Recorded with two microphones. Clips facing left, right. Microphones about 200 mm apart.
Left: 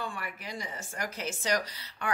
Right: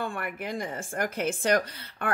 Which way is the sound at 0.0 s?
55° right (ahead or behind).